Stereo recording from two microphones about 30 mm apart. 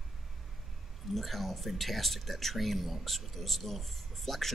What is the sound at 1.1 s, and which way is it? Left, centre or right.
Speech, centre.